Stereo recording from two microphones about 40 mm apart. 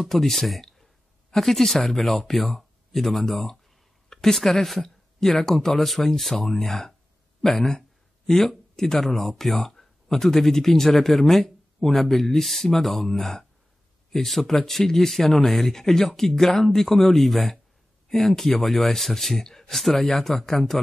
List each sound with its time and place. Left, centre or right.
0.0 s speech: centre